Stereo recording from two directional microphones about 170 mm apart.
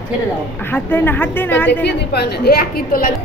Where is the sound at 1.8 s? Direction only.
85° left; by 3.1 s 60° left (ahead or behind).